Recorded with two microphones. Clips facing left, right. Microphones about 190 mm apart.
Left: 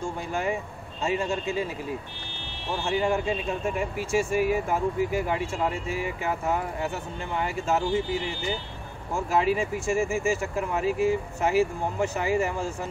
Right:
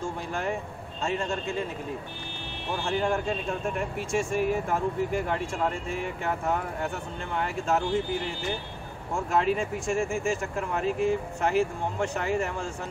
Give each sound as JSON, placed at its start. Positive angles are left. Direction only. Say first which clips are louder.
{"t": 0.0, "sound": "speech", "louder": "left 2 dB", "side_deg": 5}
{"t": 2.8, "sound": "speech", "louder": "left 2 dB", "side_deg": 5}